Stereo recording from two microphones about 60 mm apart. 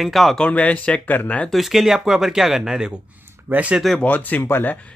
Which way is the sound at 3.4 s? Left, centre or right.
Right.